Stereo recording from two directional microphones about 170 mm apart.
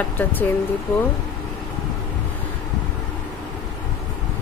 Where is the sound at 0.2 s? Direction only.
10° left (ahead or behind).